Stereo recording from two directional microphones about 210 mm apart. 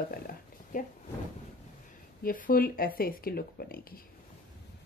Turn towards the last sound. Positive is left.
turn(degrees=45)  # may be behind; listen again after turning